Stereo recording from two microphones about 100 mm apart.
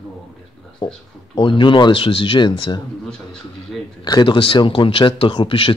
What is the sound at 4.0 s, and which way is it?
Speech, 45° left (ahead or behind).